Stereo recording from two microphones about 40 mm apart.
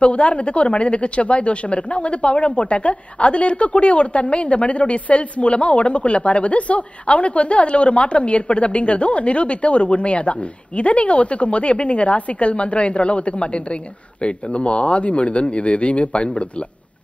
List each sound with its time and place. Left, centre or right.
0.0 s a woman's voice: left